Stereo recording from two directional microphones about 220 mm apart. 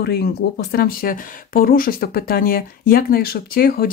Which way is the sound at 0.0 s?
45° left (ahead or behind).